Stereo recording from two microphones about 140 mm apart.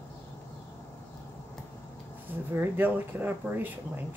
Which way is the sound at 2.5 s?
15° right (ahead or behind).